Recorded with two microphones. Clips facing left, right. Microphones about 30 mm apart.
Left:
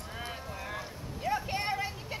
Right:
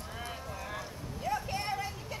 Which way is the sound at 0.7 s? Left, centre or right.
Centre.